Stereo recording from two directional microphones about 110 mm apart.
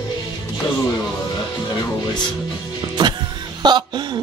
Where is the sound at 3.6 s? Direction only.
40° right (ahead or behind).